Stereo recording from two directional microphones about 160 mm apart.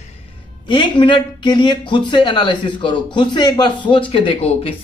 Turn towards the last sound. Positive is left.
turn(degrees=35)  # may be behind; listen again after turning